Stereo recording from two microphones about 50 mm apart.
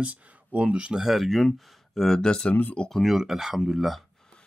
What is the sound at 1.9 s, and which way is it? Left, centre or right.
Speech, centre.